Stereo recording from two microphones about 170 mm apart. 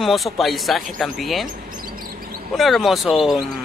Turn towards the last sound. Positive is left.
turn(degrees=0)  # may be behind; listen again after turning